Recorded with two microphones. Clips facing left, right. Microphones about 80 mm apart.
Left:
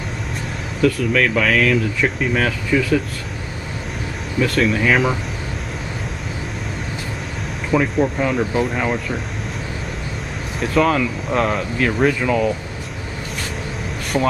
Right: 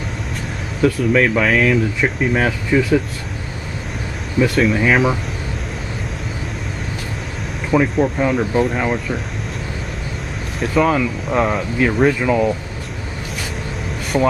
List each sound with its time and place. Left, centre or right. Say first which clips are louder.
1.1 s speech: right 2 dB; centre
4.6 s speech: even; centre
7.7 s speech: right 2 dB; centre
10.6 s speech: right 1 dB; centre
14.1 s speech: right 2 dB; centre